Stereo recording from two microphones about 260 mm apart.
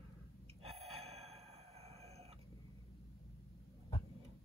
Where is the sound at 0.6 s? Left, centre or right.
Right.